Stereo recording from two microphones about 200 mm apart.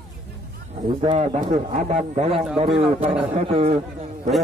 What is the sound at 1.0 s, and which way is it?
A man's voice, 30° right (ahead or behind).